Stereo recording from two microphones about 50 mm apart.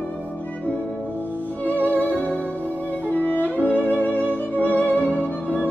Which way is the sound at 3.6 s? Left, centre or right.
Right.